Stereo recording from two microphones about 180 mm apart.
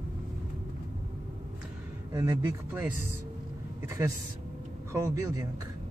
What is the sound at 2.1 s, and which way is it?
Speech, 15° right (ahead or behind).